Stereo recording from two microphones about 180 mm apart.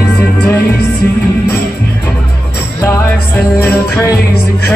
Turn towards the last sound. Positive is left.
turn(degrees=15)  # may be behind; listen again after turning